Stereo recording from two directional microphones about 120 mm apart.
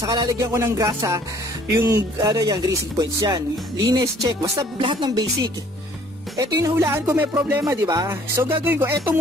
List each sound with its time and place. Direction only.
0.0 s speech: 35° right (ahead or behind)
0.5 s speech: 25° right (ahead or behind)